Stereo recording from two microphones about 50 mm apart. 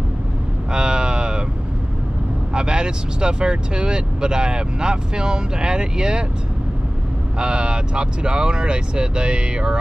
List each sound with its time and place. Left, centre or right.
0.7 s vehicle: centre
2.5 s speech: centre
7.3 s speech: centre